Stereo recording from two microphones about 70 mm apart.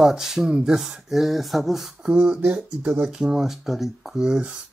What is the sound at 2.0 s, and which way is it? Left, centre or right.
Speech, centre.